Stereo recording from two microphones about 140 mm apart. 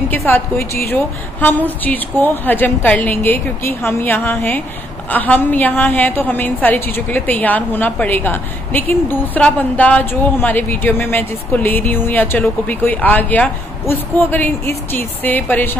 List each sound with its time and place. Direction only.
0.1 s a woman's voice: 15° left (ahead or behind)